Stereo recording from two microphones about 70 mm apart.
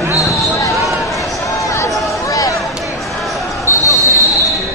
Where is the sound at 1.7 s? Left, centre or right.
Left.